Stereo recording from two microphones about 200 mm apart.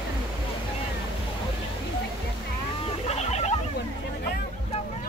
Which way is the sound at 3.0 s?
30° left (ahead or behind).